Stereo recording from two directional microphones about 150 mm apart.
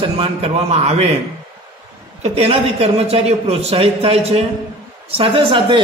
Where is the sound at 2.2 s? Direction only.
45° right (ahead or behind).